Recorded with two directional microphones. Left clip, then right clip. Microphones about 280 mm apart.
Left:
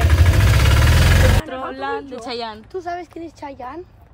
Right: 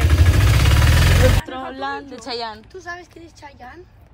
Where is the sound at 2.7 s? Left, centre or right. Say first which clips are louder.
Left 6 dB; left.